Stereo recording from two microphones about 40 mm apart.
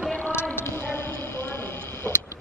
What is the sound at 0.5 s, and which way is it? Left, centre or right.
Vehicle, left.